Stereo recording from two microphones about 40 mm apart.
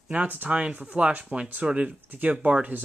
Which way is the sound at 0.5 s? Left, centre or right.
Right.